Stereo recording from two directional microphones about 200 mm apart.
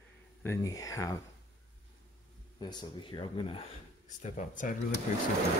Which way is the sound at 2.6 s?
20° left (ahead or behind).